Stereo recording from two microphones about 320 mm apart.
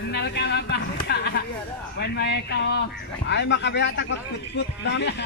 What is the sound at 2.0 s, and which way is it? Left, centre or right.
Speech, left.